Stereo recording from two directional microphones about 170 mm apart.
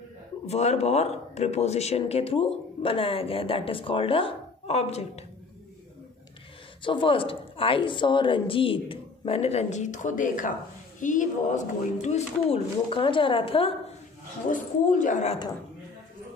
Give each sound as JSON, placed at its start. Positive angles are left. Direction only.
{"t": 0.5, "sound": "speech", "side_deg": 40}
{"t": 6.8, "sound": "speech", "side_deg": 30}
{"t": 14.5, "sound": "a woman's voice", "side_deg": 50}